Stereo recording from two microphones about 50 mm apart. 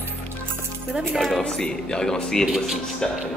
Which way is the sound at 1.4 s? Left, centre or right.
Centre.